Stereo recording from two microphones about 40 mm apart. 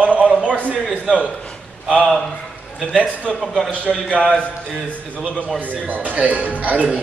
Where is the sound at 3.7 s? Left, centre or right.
Right.